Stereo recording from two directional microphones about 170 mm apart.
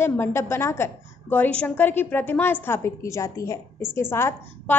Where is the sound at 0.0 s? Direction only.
15° left (ahead or behind).